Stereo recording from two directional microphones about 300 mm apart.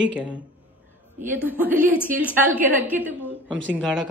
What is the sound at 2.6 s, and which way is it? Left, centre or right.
Speech, centre.